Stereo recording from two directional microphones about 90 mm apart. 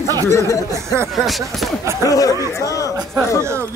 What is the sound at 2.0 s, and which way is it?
Speech, 40° left (ahead or behind).